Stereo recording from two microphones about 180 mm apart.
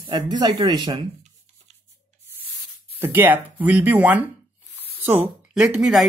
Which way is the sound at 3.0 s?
10° right (ahead or behind).